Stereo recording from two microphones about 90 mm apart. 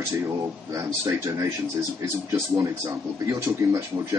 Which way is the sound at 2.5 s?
35° right (ahead or behind).